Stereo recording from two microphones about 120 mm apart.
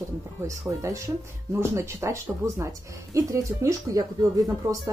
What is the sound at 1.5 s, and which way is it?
Speech, 25° right (ahead or behind).